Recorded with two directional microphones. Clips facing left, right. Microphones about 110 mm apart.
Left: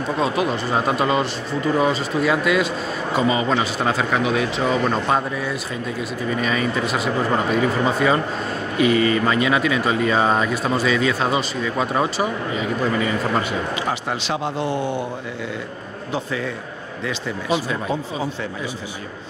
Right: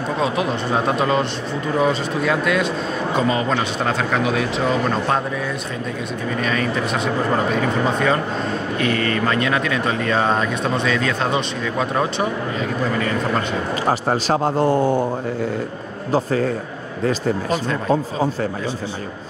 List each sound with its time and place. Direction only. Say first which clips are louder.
0.2 s speech: even; centre (ahead or behind)
13.8 s a man's voice: right 5 dB; 40° right (ahead or behind)
16.1 s a man's voice: right 7 dB; 40° right (ahead or behind)